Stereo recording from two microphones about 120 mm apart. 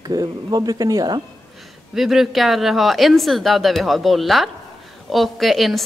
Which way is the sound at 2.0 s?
Centre (ahead or behind).